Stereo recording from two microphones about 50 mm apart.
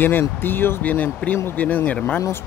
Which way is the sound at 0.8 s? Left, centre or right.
Left.